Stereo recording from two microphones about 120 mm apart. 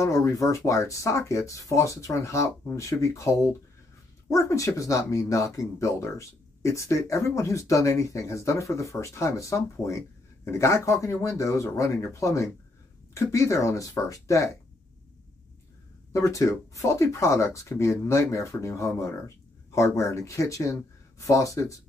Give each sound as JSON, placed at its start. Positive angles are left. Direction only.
{"t": 0.0, "sound": "speech", "side_deg": 25}
{"t": 16.1, "sound": "speech", "side_deg": 25}